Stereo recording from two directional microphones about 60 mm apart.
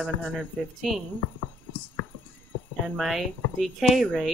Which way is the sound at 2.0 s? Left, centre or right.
Left.